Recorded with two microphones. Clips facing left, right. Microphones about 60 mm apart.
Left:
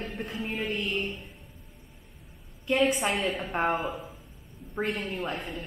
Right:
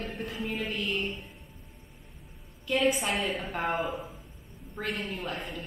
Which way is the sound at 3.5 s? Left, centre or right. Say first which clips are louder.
Left 7 dB; left.